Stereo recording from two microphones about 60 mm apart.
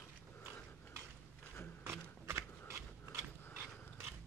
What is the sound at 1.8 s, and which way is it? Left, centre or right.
Biting, right.